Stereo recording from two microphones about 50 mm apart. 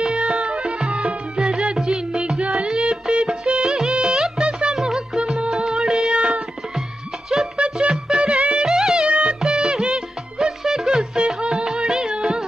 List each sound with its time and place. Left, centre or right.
0.1 s music: centre
7.7 s music: centre
8.2 s music: centre
8.5 s music: centre